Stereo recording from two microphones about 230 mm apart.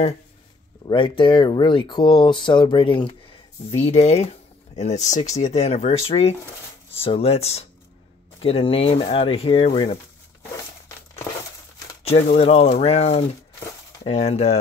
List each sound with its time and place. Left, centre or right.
0.8 s speech: left
12.3 s speech: left